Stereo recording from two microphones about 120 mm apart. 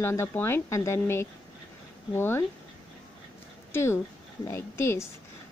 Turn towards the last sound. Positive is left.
turn(degrees=20)  # may be behind; listen again after turning